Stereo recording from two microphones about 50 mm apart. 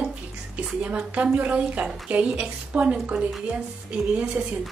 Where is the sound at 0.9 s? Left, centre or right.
Right.